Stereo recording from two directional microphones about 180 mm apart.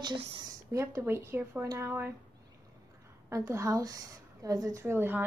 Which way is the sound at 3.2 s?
15° right (ahead or behind).